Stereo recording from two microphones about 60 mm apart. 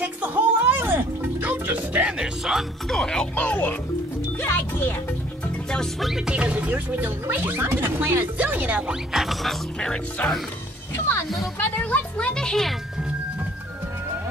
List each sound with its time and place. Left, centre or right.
0.0 s music: right
1.7 s a child's voice: centre; by 4.9 s left
5.7 s speech: centre
9.2 s speech: centre
11.6 s speech: centre